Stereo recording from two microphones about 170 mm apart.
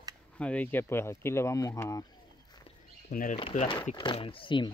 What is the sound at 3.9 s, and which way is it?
Speech, 30° left (ahead or behind).